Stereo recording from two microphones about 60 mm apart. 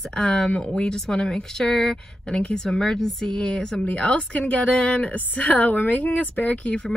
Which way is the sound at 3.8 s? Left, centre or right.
Left.